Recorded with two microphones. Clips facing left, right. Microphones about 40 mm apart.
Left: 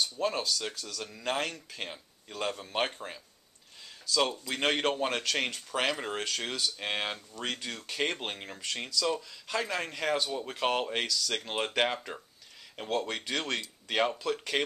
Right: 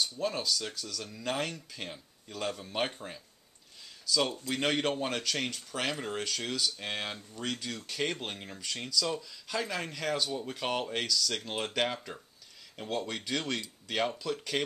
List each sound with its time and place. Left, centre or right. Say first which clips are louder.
0.2 s speech: left 2 dB; centre
4.1 s speech: left 1 dB; centre